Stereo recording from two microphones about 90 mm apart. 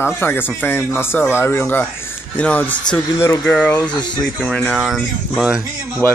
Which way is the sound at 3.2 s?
30° left (ahead or behind).